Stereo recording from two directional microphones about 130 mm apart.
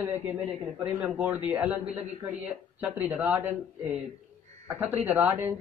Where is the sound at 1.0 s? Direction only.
10° right (ahead or behind).